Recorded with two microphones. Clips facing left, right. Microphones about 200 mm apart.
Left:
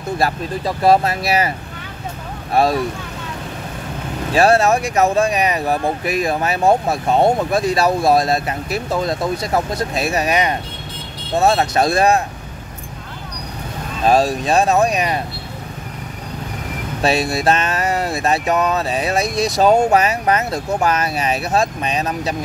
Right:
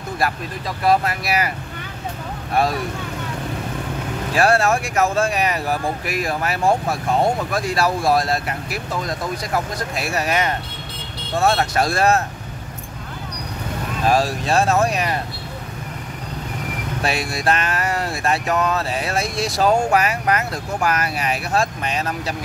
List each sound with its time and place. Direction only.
0.2 s speech: 30° left (ahead or behind)
4.3 s speech: 25° left (ahead or behind)
14.0 s speech: 25° left (ahead or behind)
17.0 s speech: 25° left (ahead or behind)